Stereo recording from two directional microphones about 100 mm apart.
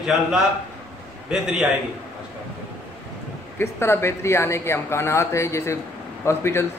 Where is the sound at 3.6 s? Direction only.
25° left (ahead or behind).